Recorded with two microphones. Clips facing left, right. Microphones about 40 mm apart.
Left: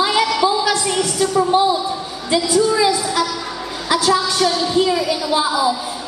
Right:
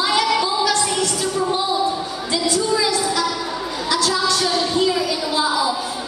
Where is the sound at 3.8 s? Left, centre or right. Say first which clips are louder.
Left 3 dB; centre.